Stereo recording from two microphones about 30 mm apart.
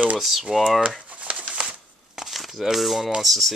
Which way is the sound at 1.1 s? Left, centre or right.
Right.